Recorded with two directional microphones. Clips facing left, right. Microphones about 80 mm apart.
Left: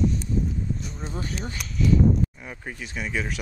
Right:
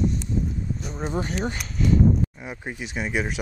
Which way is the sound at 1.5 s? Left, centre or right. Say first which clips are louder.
Even; right.